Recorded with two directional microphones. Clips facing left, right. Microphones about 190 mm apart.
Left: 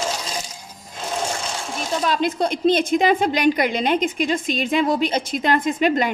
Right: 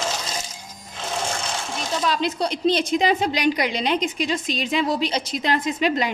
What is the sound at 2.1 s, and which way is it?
A woman's voice, 50° left (ahead or behind).